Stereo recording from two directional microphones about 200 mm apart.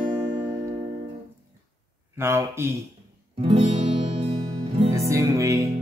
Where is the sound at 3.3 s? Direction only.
30° right (ahead or behind).